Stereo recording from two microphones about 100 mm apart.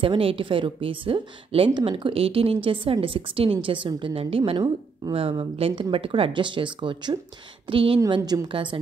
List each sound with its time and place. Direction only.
0.0 s a woman's voice: 65° right (ahead or behind)
7.6 s a woman's voice: 65° right (ahead or behind)
8.2 s a woman's voice: 30° right (ahead or behind)
8.5 s a woman's voice: 60° right (ahead or behind)